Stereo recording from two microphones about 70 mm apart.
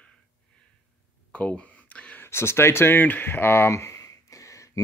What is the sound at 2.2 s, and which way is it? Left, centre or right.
Speech, left.